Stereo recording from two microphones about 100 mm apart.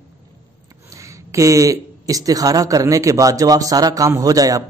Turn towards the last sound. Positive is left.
turn(degrees=-35)  # may be behind; listen again after turning